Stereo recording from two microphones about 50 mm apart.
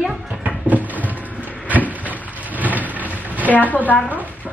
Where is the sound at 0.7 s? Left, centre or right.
Right.